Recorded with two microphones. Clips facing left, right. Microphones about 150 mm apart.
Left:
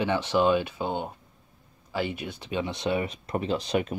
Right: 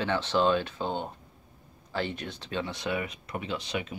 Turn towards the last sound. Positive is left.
turn(degrees=40)  # may be behind; listen again after turning